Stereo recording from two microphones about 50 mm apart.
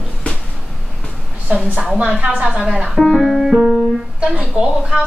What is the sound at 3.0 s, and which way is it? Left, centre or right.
Speech, centre.